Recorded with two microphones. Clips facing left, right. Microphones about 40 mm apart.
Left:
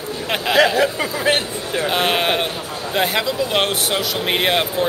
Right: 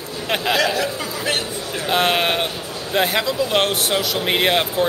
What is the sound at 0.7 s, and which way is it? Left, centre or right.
Speech, left.